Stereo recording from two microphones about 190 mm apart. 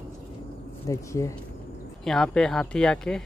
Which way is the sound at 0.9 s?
15° left (ahead or behind).